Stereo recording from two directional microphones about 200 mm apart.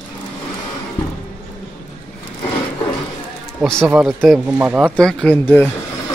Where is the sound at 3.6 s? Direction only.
5° left (ahead or behind).